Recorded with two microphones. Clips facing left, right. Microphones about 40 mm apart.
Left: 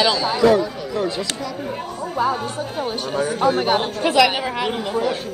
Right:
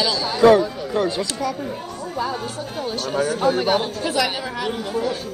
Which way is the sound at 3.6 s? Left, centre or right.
Left.